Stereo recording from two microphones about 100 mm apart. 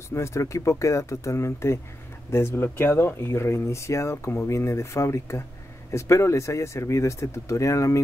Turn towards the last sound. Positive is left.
turn(degrees=30)  # may be behind; listen again after turning